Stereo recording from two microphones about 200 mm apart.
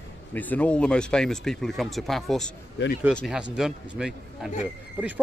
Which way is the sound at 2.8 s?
60° left (ahead or behind).